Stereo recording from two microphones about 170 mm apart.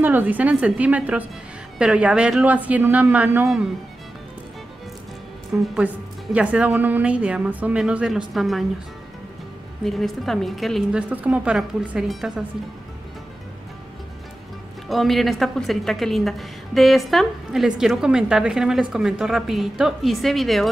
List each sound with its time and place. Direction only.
0.0 s a woman's voice: 10° right (ahead or behind)
5.5 s a woman's voice: 10° right (ahead or behind)
9.8 s a woman's voice: centre (ahead or behind)
14.9 s a woman's voice: centre (ahead or behind)